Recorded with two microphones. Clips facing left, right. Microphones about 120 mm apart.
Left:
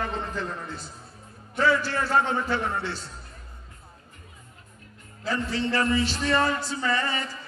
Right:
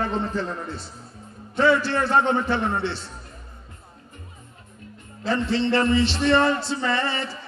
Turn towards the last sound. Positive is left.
turn(degrees=-30)  # may be behind; listen again after turning